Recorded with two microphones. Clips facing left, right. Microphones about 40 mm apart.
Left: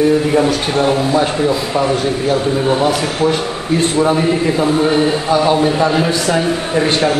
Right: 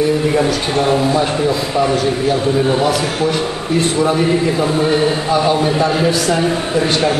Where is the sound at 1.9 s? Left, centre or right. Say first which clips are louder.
Even; left.